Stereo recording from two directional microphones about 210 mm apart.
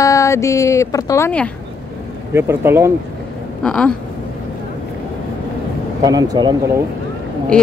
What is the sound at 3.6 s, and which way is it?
Speech, 5° left (ahead or behind).